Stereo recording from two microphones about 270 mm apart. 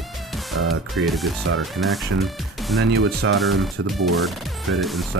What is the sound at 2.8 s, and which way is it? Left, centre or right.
Speech, right.